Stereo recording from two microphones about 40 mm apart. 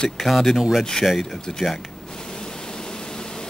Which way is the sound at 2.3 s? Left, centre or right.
Centre.